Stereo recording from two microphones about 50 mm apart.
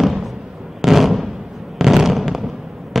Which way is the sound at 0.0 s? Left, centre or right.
Centre.